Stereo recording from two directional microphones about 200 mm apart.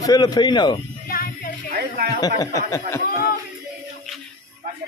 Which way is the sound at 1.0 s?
50° left (ahead or behind).